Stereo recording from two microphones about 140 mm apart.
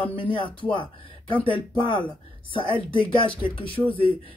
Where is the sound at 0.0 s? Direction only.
35° left (ahead or behind).